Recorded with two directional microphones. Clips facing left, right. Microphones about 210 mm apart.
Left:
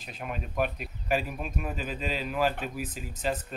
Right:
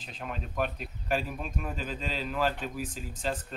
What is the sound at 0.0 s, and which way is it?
Speech, 10° left (ahead or behind).